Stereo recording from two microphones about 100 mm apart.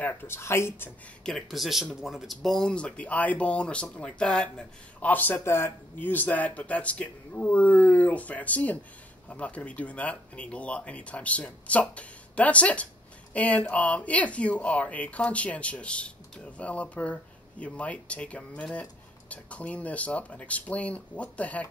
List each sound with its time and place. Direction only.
0.0 s speech: 20° left (ahead or behind)
1.2 s speech: centre (ahead or behind)